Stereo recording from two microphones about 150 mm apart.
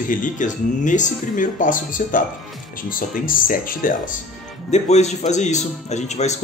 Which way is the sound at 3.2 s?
65° left (ahead or behind).